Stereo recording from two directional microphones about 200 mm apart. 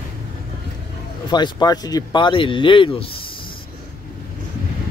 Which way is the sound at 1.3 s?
20° left (ahead or behind).